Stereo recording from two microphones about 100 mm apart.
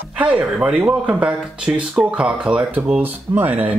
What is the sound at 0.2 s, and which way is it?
Speech, 10° right (ahead or behind).